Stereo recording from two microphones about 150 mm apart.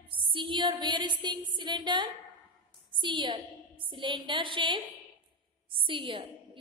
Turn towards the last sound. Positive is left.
turn(degrees=-35)  # may be behind; listen again after turning